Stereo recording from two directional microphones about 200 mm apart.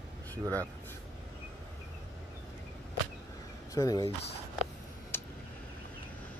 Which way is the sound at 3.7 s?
20° left (ahead or behind).